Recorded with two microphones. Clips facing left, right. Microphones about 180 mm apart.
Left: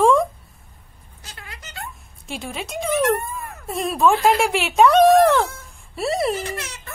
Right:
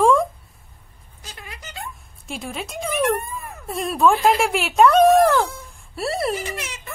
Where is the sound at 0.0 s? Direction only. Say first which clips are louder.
Left 1 dB; centre (ahead or behind).